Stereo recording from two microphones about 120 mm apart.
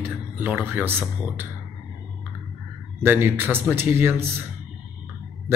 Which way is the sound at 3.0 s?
20° right (ahead or behind).